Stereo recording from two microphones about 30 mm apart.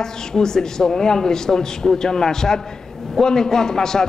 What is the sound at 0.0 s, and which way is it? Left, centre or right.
A man's voice, centre.